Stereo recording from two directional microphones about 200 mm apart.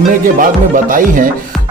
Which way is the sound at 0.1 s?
40° right (ahead or behind).